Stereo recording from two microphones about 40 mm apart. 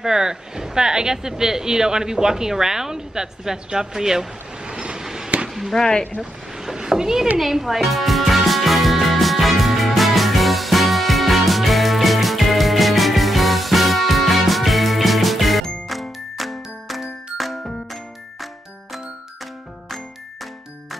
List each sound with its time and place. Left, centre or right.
0.0 s speech: centre
4.6 s train: right
5.5 s chop: centre
5.8 s speech: centre
6.5 s vehicle: centre
7.3 s music: centre